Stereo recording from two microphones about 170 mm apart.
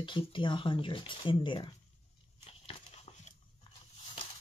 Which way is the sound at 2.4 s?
35° left (ahead or behind).